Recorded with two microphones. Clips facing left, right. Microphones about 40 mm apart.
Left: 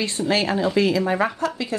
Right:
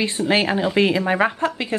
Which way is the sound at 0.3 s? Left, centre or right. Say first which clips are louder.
Right 1 dB; right.